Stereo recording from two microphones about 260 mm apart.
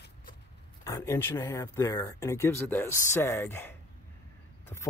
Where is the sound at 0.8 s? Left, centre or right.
Centre.